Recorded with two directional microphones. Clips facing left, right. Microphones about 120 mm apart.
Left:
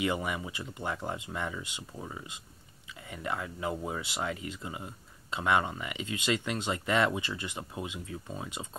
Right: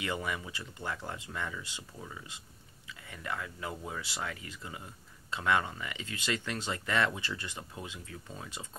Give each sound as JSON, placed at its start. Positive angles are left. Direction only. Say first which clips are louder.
{"t": 0.0, "sound": "speech", "louder": "left 4 dB", "side_deg": 20}